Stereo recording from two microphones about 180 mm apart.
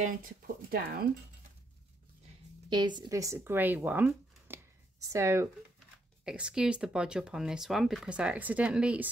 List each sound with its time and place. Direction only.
0.0 s speech: 50° right (ahead or behind)
3.0 s speech: 20° right (ahead or behind)